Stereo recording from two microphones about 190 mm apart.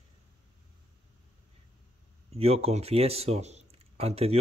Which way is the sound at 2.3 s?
30° right (ahead or behind).